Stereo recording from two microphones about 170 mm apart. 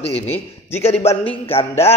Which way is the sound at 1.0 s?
35° left (ahead or behind).